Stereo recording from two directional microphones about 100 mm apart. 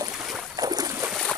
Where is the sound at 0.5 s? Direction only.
40° right (ahead or behind).